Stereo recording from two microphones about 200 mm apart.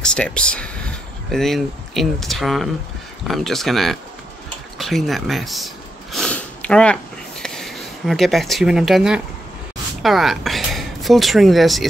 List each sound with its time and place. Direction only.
0.0 s speech: 5° left (ahead or behind)
6.1 s sniff: 5° left (ahead or behind)
10.0 s speech: centre (ahead or behind)